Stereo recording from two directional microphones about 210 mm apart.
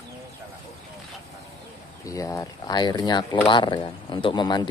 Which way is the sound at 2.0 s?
15° left (ahead or behind).